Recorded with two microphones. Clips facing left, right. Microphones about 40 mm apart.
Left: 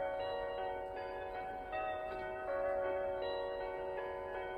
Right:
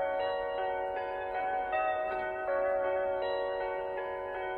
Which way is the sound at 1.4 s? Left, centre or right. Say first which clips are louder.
Right 12 dB; right.